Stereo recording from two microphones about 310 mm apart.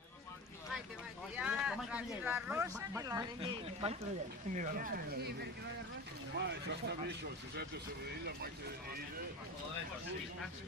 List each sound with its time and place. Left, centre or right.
1.3 s speech: centre; by 7.6 s right